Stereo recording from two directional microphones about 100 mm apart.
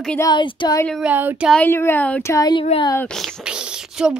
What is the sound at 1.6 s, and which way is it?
Speech, 25° left (ahead or behind).